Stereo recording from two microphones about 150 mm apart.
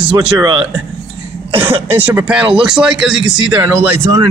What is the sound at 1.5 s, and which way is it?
A man's voice, 15° right (ahead or behind).